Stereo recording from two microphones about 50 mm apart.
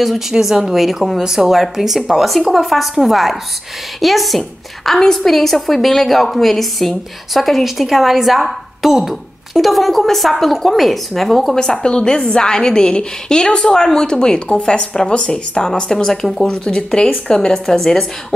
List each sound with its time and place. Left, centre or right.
0.0 s a woman's voice: centre
11.6 s a woman's voice: centre
16.4 s a woman's voice: centre